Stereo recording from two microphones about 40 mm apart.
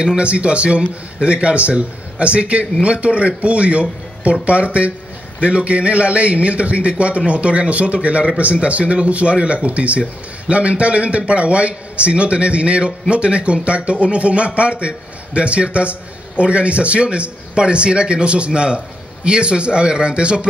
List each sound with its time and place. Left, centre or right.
0.0 s speech: right